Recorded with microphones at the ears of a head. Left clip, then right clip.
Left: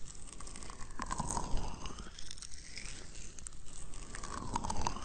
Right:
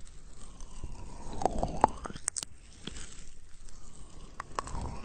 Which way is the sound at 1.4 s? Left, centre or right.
Right.